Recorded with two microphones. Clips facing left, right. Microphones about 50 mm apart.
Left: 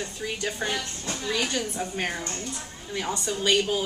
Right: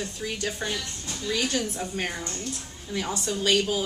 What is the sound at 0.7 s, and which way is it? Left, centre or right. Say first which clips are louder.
Speech: left 3 dB; left.